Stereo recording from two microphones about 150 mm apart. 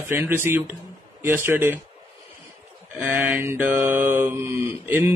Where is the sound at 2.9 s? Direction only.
15° right (ahead or behind).